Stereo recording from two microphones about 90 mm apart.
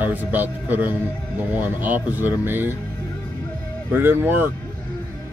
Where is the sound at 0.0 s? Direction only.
20° right (ahead or behind).